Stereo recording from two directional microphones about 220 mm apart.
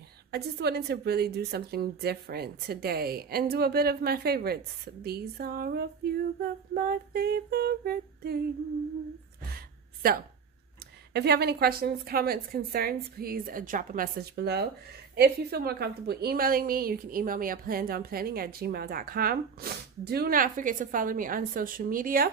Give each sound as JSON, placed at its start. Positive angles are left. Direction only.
{"t": 0.3, "sound": "a woman's voice", "side_deg": -45}
{"t": 10.0, "sound": "a woman's voice", "side_deg": -40}